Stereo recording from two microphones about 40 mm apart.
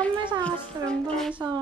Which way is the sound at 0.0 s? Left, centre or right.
Left.